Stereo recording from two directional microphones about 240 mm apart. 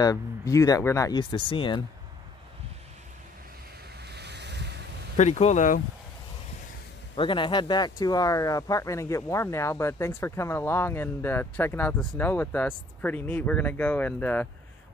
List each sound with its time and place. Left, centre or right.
0.0 s speech: centre
4.1 s waves: right
5.1 s speech: left
7.2 s speech: centre